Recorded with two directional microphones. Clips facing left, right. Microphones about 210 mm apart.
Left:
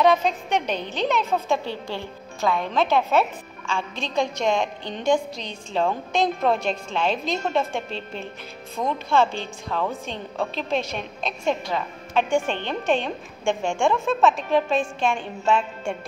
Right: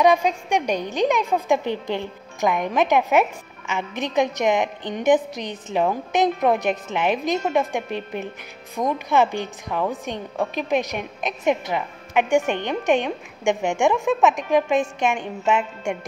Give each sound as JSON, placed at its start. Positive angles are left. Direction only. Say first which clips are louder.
{"t": 0.0, "sound": "a woman's voice", "louder": "right 2 dB", "side_deg": -10}